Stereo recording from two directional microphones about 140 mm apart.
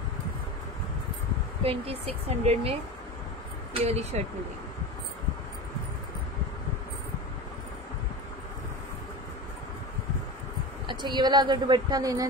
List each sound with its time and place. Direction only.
1.6 s speech: 45° right (ahead or behind)
3.7 s speech: 50° right (ahead or behind)
10.9 s a woman's voice: 30° right (ahead or behind)